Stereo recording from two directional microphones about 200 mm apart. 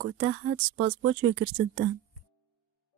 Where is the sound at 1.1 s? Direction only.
80° right.